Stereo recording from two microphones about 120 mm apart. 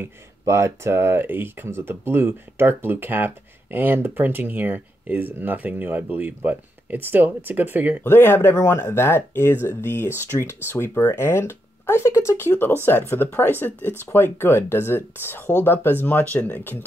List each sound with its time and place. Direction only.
0.0 s speech: 25° right (ahead or behind)
8.0 s speech: 20° left (ahead or behind)